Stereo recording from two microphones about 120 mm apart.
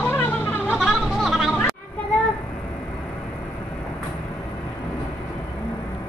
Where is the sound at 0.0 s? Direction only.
20° left (ahead or behind).